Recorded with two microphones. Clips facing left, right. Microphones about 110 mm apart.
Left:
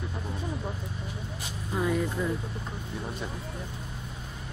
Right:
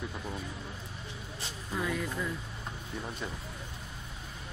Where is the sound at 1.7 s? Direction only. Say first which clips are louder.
Left 6 dB; 25° left (ahead or behind).